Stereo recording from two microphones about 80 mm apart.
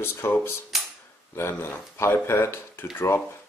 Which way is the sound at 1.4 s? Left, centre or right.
Left.